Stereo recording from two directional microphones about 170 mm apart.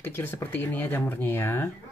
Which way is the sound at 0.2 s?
10° left (ahead or behind).